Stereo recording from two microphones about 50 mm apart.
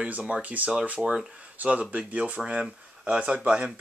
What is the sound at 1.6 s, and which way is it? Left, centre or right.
Speech, right.